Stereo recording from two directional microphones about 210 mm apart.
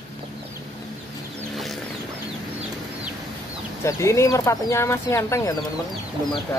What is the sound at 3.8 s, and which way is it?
Speech, 15° left (ahead or behind).